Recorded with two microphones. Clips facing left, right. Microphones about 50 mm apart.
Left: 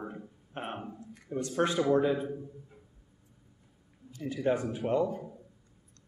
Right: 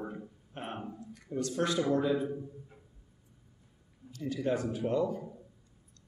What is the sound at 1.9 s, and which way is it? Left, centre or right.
Speech, left.